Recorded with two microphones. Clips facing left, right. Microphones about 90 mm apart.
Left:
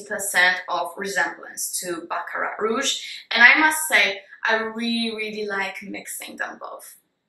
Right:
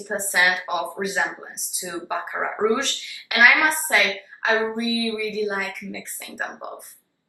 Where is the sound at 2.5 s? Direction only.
10° right (ahead or behind).